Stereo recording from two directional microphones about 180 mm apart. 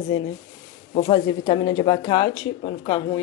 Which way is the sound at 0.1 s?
30° left (ahead or behind).